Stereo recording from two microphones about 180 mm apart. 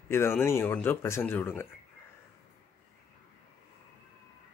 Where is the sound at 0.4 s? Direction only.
15° left (ahead or behind).